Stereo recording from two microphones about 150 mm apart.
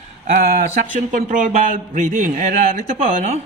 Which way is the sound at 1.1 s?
60° right (ahead or behind).